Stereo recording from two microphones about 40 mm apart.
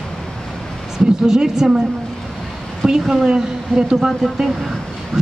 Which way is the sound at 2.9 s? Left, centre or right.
Centre.